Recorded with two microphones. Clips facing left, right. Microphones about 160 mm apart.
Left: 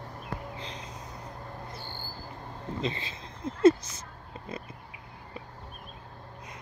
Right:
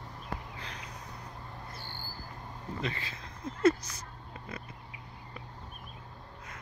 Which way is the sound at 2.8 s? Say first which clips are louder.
Left 4 dB; 25° left (ahead or behind).